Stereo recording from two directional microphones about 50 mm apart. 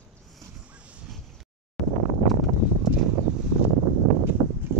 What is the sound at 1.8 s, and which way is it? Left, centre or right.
Wind noise, centre.